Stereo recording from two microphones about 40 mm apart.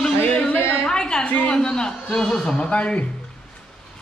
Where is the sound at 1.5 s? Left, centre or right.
Centre.